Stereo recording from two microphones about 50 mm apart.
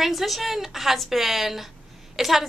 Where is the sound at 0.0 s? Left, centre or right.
Centre.